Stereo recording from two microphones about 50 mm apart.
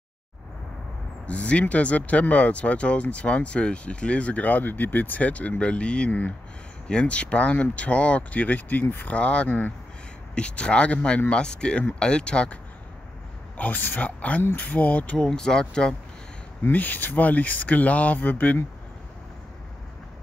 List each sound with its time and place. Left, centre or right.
1.2 s speech: left
9.1 s speech: left
13.6 s speech: left
15.1 s speech: centre
16.7 s speech: left